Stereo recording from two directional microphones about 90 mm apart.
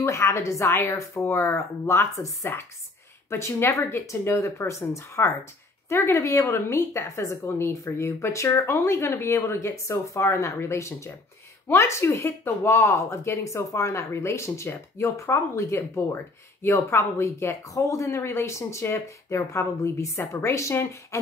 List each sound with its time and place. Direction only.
0.0 s speech: 30° left (ahead or behind)